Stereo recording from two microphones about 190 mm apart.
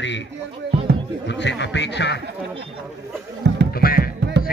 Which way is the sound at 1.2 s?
65° left (ahead or behind).